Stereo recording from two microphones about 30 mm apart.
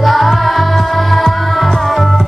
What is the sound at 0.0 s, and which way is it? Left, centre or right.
Music, centre.